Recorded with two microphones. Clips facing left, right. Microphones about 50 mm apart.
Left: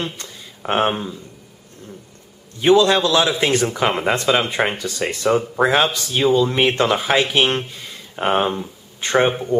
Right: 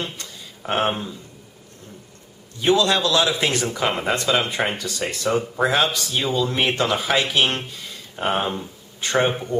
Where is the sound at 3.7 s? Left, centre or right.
Centre.